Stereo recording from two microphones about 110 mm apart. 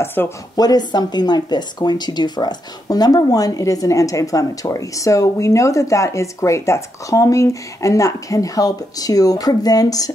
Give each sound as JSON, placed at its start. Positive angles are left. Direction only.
{"t": 0.0, "sound": "speech", "side_deg": 20}
{"t": 0.6, "sound": "speech", "side_deg": 35}